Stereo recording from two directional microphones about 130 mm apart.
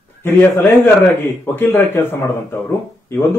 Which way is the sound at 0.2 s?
15° left (ahead or behind).